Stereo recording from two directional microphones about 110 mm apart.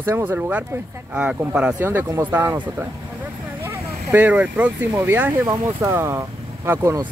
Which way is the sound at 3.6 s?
15° right (ahead or behind).